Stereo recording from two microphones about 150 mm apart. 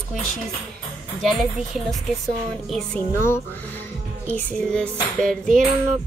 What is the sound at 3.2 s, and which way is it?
A woman's voice, 15° left (ahead or behind).